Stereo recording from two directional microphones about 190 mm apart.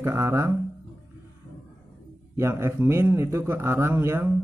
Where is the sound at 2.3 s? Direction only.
15° right (ahead or behind).